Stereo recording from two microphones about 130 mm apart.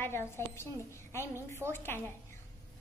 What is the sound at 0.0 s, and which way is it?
A woman's voice, 20° left (ahead or behind).